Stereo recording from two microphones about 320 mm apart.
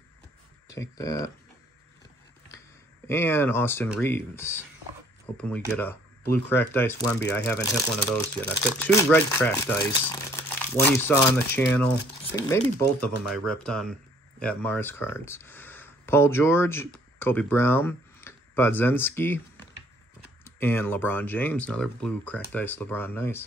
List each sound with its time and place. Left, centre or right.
0.7 s speech: centre
3.1 s speech: centre
6.5 s speech: centre
20.4 s speech: centre